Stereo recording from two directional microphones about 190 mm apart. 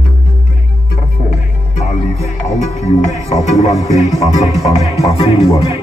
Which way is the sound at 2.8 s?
35° left (ahead or behind).